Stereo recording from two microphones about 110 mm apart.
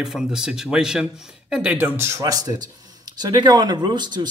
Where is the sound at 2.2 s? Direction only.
35° right (ahead or behind).